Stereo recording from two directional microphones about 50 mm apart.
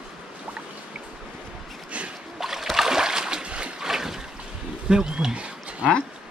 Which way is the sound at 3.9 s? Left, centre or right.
Centre.